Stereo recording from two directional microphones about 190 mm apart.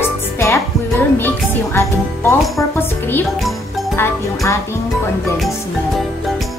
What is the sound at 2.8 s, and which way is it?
Speech, 10° left (ahead or behind).